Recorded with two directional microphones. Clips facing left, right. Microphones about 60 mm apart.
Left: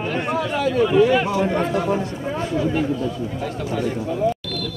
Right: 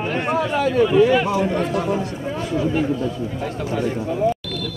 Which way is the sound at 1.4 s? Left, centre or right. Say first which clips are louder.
Even; left.